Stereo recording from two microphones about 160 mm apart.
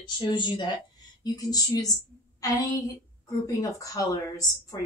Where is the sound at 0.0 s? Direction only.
30° left (ahead or behind).